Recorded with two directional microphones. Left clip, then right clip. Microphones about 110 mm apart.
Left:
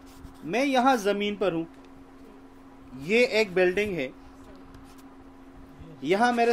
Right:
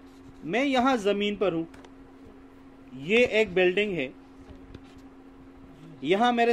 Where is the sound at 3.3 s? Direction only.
20° right (ahead or behind).